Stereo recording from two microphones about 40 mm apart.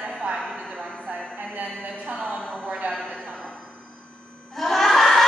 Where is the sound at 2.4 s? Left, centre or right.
Centre.